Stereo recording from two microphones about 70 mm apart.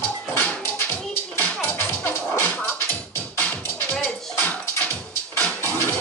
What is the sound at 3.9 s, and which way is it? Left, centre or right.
Music, left.